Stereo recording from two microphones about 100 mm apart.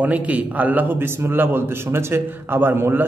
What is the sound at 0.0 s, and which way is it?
A man's voice, 15° right (ahead or behind).